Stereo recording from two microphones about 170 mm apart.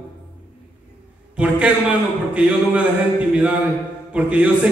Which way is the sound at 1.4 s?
5° right (ahead or behind).